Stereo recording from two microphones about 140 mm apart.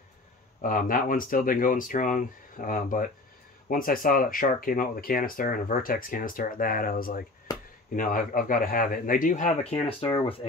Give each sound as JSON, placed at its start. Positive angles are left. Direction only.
{"t": 0.6, "sound": "speech", "side_deg": 75}
{"t": 3.6, "sound": "speech", "side_deg": 85}